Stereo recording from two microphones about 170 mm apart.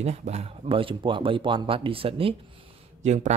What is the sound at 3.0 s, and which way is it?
Speech, 45° right (ahead or behind).